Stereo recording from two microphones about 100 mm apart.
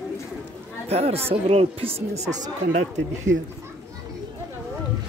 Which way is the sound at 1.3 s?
80° right.